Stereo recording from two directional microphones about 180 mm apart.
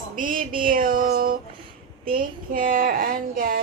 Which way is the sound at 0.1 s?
50° right (ahead or behind).